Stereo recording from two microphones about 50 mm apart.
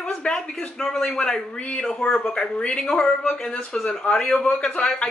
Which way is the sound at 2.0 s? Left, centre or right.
Centre.